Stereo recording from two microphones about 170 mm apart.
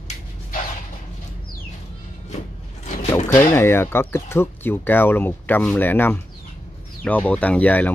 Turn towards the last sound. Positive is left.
turn(degrees=10)  # may be behind; listen again after turning